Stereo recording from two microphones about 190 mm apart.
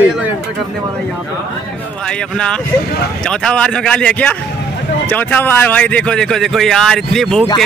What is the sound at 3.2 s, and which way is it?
Speech, 5° left (ahead or behind).